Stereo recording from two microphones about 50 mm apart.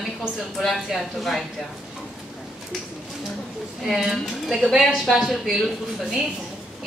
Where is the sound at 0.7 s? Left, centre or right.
Centre.